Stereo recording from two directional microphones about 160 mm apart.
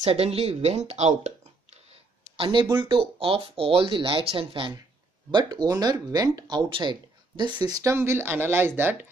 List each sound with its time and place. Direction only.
0.0 s speech: 40° right (ahead or behind); by 8.9 s 15° right (ahead or behind)